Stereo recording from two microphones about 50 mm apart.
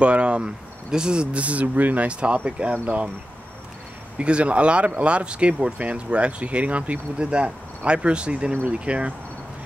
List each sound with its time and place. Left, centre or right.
0.0 s speech: right
4.2 s speech: right